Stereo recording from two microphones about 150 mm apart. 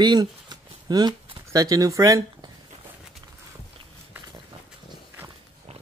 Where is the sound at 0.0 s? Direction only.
30° right (ahead or behind).